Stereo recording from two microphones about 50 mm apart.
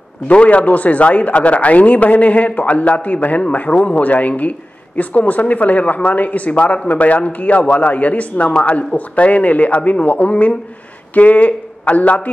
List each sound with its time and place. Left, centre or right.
0.3 s a man's voice: left